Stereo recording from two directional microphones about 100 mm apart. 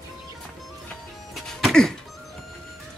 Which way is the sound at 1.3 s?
5° left (ahead or behind).